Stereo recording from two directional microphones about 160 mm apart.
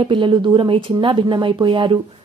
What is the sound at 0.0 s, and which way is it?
A woman's voice, 30° right (ahead or behind).